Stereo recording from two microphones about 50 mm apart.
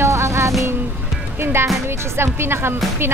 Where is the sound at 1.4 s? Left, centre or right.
Right.